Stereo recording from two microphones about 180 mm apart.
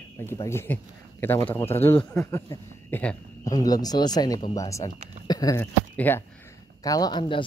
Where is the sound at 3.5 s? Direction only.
20° left (ahead or behind).